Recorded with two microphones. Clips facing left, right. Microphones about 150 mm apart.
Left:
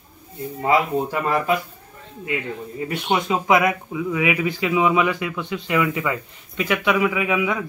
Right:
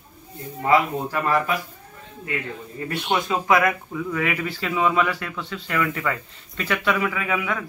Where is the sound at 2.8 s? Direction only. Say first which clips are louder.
Left 2 dB; 15° left (ahead or behind).